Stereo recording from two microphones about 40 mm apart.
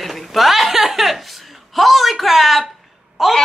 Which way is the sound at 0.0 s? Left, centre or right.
Centre.